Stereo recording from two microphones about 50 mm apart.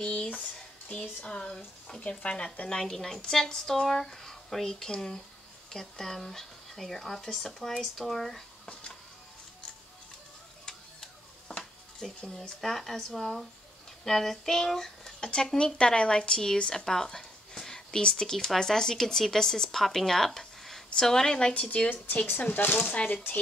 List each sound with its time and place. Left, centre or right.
0.9 s speech: centre
2.7 s speech: centre
10.6 s a sound: centre
12.0 s speech: centre
21.8 s speech: left